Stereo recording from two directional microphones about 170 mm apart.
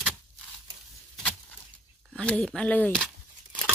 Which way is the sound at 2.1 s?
Centre (ahead or behind).